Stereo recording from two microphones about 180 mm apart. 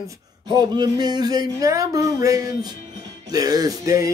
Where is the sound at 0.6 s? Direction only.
20° right (ahead or behind).